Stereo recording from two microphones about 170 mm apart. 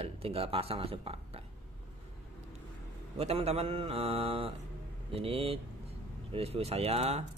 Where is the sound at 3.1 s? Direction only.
35° right (ahead or behind).